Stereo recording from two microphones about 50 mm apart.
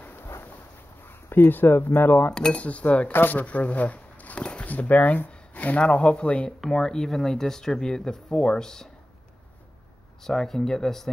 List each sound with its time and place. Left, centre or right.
1.0 s a sound: left
1.5 s speech: left
3.1 s speech: left
4.4 s a sound: left
4.6 s speech: left
5.3 s a sound: left
5.9 s speech: left
6.7 s speech: centre
10.2 s speech: centre